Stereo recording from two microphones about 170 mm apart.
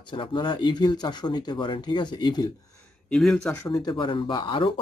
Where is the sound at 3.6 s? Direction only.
20° left (ahead or behind).